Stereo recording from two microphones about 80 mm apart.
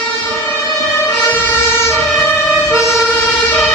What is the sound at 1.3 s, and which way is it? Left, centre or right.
Emergency vehicle, left.